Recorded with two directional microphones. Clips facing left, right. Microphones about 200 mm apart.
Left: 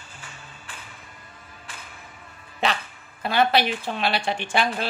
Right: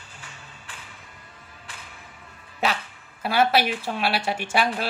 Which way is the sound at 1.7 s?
45° left (ahead or behind).